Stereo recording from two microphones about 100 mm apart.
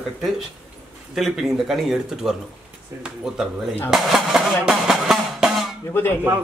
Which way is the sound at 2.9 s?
30° right (ahead or behind).